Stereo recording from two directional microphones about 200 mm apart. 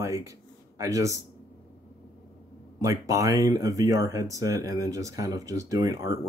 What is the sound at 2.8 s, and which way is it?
Speech, 15° right (ahead or behind).